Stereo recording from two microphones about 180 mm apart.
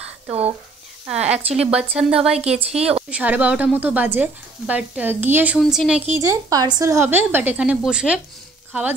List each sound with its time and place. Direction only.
0.3 s a woman's voice: 35° right (ahead or behind)
1.0 s speech: 5° right (ahead or behind)
2.3 s a woman's voice: 35° right (ahead or behind)
3.1 s a woman's voice: 5° right (ahead or behind)
6.1 s a woman's voice: 15° right (ahead or behind)